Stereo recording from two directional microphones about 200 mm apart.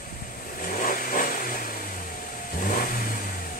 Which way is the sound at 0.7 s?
45° left (ahead or behind).